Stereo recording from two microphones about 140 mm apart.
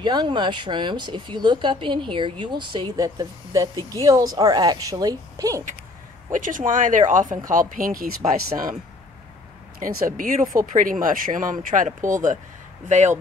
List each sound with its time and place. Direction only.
0.0 s speech: 30° right (ahead or behind)
6.3 s speech: 70° right (ahead or behind)
9.8 s speech: 75° right (ahead or behind)